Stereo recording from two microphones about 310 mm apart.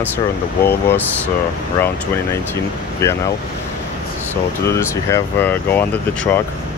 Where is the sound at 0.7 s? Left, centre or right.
Centre.